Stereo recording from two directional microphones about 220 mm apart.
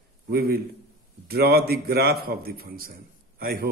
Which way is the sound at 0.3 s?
45° right (ahead or behind).